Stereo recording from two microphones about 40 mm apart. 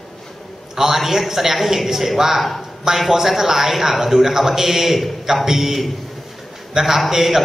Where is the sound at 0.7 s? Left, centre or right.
Centre.